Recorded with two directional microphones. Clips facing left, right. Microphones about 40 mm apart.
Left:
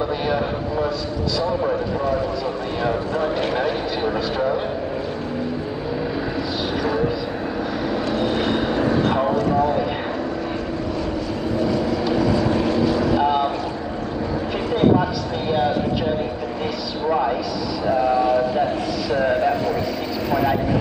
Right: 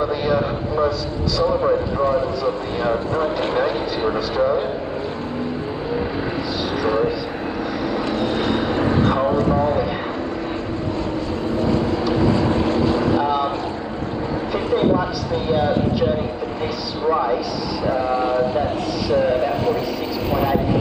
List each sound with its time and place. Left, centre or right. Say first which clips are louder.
2.8 s speech: right 1 dB; right
4.0 s speech: right 3 dB; centre
8.7 s vehicle: right 2 dB; right
9.3 s speech: right 1 dB; right
11.6 s vehicle: right 1 dB; right
18.0 s speech: left 2 dB; right